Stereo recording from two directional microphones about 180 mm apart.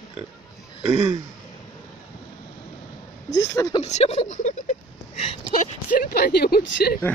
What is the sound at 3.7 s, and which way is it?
Speech, 35° left (ahead or behind).